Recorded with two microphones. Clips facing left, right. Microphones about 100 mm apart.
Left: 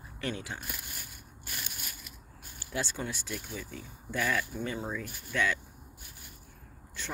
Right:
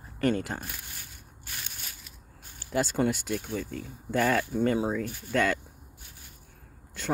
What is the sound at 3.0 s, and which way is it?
Speech, 70° right (ahead or behind).